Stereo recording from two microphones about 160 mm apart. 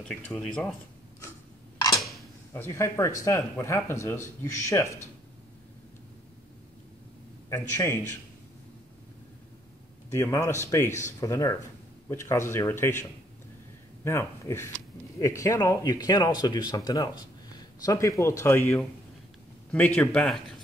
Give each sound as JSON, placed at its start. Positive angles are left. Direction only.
{"t": 0.3, "sound": "speech", "side_deg": 5}
{"t": 2.0, "sound": "a sound", "side_deg": 0}
{"t": 2.5, "sound": "speech", "side_deg": 20}
{"t": 7.4, "sound": "speech", "side_deg": 20}
{"t": 10.1, "sound": "speech", "side_deg": 15}
{"t": 14.0, "sound": "speech", "side_deg": 15}